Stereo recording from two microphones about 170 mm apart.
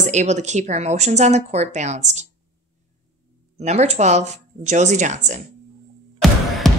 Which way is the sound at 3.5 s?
40° right (ahead or behind).